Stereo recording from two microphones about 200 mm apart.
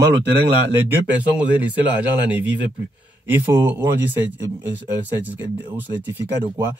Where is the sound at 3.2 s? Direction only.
10° right (ahead or behind).